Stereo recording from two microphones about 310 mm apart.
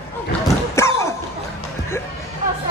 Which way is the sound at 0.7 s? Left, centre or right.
Centre.